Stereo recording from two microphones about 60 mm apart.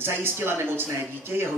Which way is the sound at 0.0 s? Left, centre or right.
Right.